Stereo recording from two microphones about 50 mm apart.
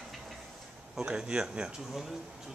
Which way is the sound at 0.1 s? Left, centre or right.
Centre.